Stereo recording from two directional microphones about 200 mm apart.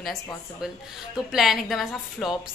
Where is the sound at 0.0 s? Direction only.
Centre (ahead or behind).